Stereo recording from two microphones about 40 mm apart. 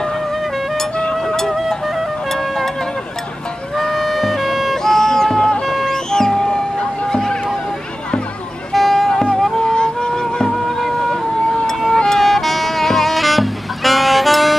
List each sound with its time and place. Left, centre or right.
1.1 s music: centre
3.7 s music: centre
7.1 s a sound: centre
8.7 s music: centre
9.6 s music: centre
10.2 s music: centre